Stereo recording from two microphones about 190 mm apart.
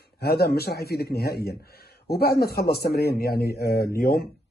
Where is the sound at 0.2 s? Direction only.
55° left (ahead or behind).